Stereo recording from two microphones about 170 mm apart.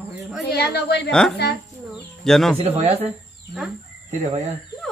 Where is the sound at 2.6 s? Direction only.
40° right (ahead or behind).